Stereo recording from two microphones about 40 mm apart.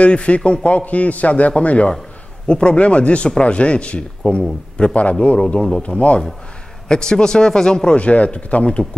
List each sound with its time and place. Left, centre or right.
0.0 s speech: left
7.9 s speech: left